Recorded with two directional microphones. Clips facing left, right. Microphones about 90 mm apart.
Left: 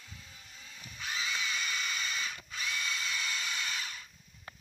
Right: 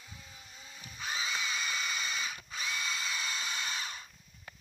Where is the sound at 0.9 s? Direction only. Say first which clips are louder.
Right 1 dB; 20° right (ahead or behind).